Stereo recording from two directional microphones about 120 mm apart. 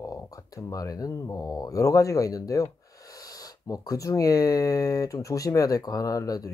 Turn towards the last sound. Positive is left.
turn(degrees=30)  # may be behind; listen again after turning